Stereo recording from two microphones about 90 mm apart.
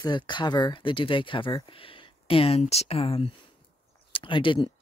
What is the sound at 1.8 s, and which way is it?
Speech, 90° left.